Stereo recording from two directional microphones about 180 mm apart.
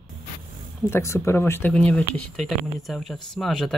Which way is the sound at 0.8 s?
15° left (ahead or behind).